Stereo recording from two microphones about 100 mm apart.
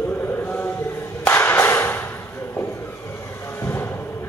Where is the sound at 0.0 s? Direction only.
20° left (ahead or behind).